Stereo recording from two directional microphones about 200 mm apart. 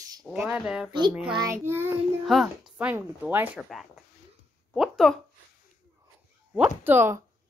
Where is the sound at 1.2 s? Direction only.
20° right (ahead or behind).